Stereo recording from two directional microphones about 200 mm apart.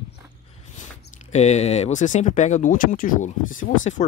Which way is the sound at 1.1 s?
35° left (ahead or behind).